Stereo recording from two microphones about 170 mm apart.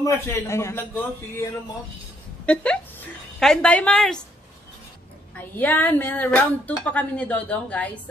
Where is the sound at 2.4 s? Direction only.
5° left (ahead or behind).